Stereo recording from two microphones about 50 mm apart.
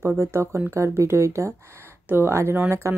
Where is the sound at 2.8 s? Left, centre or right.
Right.